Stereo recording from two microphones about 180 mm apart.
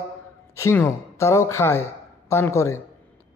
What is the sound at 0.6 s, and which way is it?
A man's voice, 15° left (ahead or behind).